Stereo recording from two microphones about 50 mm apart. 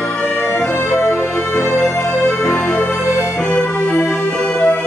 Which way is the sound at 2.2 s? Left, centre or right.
Centre.